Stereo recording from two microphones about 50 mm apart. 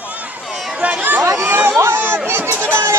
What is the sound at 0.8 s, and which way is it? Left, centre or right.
Chatter, right.